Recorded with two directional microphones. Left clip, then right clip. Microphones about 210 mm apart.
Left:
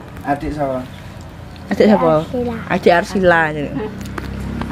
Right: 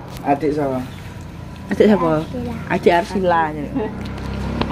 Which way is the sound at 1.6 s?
20° left (ahead or behind).